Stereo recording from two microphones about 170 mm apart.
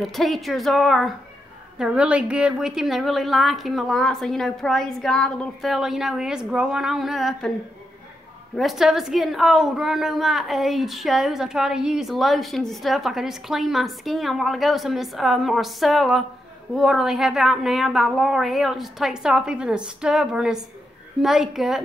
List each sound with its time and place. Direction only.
0.0 s a woman's voice: centre (ahead or behind)
8.5 s a woman's voice: centre (ahead or behind)